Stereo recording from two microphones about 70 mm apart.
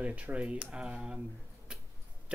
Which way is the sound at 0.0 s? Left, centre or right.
Right.